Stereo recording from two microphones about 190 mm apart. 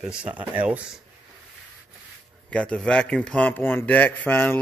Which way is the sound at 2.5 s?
5° left (ahead or behind).